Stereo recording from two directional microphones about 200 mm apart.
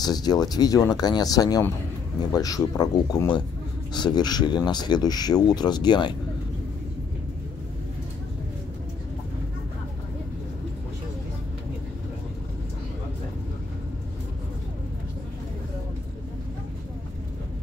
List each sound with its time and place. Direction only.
0.0 s speech: 20° left (ahead or behind)